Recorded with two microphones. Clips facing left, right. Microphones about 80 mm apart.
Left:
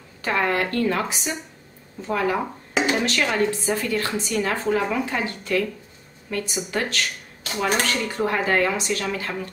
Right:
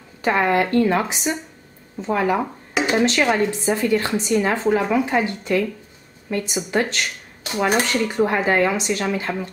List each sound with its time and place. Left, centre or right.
0.2 s speech: right